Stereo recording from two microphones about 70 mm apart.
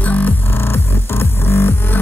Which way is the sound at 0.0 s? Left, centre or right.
Left.